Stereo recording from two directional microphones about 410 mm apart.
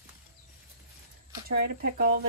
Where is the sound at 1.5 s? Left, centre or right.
Right.